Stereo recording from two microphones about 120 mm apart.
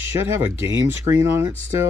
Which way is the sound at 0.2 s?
20° right (ahead or behind).